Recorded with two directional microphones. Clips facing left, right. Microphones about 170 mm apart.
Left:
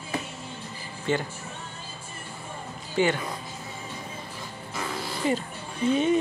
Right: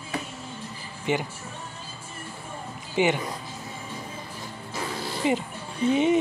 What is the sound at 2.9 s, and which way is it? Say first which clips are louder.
Speech: right 1 dB; 15° right (ahead or behind).